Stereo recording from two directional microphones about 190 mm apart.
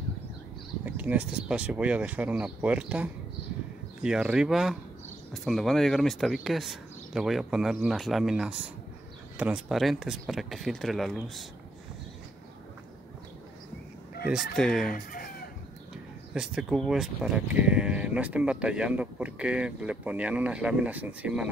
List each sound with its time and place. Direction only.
0.8 s speech: 10° right (ahead or behind)
14.2 s speech: centre (ahead or behind)
14.9 s chicken: 45° left (ahead or behind)
16.3 s speech: 5° right (ahead or behind)